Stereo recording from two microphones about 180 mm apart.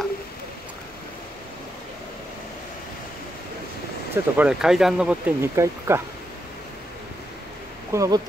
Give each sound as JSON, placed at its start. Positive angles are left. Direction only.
{"t": 4.1, "sound": "speech", "side_deg": -5}
{"t": 7.9, "sound": "speech", "side_deg": -20}